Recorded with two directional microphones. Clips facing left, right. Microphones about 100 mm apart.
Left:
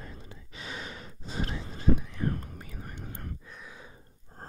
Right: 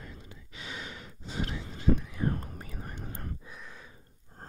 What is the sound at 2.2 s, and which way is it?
Whispering, 30° right (ahead or behind).